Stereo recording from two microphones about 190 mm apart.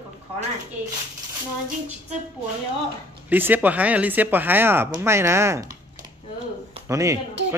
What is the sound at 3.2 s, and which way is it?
A man's voice, 10° right (ahead or behind).